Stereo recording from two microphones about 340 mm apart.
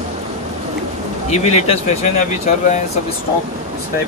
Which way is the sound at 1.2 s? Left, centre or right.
Centre.